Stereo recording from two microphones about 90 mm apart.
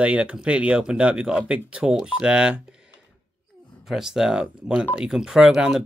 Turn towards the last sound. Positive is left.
turn(degrees=-5)  # may be behind; listen again after turning